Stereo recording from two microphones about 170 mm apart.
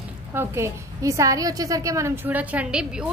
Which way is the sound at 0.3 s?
15° right (ahead or behind).